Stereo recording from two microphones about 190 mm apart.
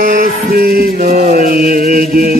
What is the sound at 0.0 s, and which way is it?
Mantra, 45° right (ahead or behind).